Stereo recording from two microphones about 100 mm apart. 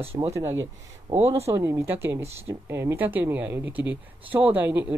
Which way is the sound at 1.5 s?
30° right (ahead or behind).